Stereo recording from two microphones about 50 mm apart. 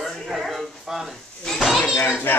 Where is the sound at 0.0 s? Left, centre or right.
Centre.